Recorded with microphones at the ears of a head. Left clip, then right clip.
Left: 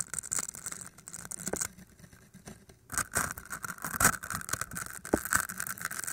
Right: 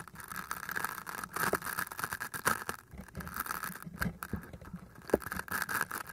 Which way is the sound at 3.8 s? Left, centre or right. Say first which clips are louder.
Left 11 dB; left.